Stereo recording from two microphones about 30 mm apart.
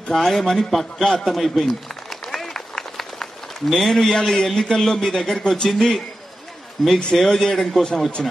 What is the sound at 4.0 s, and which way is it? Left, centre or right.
A man's voice, centre.